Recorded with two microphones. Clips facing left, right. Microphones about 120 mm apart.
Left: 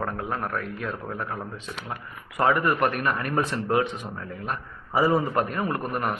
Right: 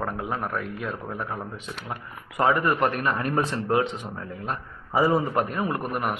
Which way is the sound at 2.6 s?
25° right (ahead or behind).